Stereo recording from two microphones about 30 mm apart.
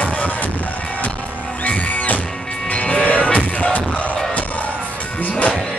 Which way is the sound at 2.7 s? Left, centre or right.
Left.